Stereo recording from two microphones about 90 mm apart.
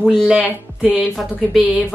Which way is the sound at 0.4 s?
15° right (ahead or behind).